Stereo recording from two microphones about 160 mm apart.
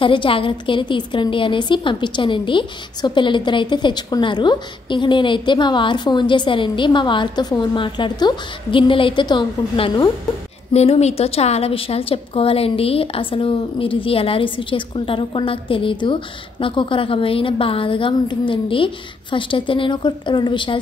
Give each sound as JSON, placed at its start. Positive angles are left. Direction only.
{"t": 0.0, "sound": "a woman's voice", "side_deg": 30}
{"t": 10.7, "sound": "a woman's voice", "side_deg": 40}